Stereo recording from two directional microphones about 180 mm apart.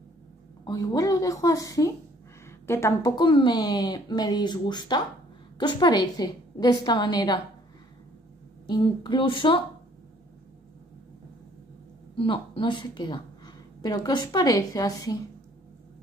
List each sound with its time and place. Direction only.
0.7 s speech: 20° left (ahead or behind)
8.6 s speech: 25° left (ahead or behind)
12.2 s speech: 25° left (ahead or behind)